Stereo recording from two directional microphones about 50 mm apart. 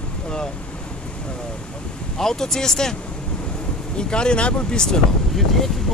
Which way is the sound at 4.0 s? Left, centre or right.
Centre.